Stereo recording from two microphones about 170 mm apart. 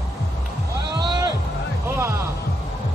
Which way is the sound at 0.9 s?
25° right (ahead or behind).